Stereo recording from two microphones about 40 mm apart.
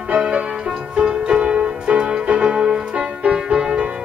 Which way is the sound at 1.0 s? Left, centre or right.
Right.